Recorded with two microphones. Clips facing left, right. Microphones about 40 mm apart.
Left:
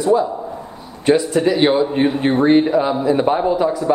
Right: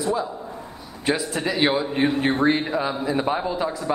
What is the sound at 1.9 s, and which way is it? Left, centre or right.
A man's voice, centre.